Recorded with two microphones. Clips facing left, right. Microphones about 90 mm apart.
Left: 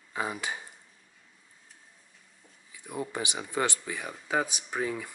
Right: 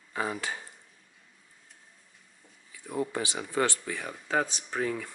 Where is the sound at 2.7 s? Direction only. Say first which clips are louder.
Right 3 dB; 15° left (ahead or behind).